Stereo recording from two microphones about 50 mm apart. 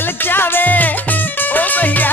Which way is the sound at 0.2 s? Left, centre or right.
Left.